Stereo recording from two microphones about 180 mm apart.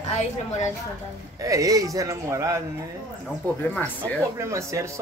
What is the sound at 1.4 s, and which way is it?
Speech, 20° right (ahead or behind).